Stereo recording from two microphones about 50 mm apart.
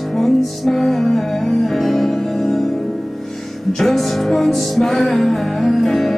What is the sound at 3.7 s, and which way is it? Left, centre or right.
Music, centre.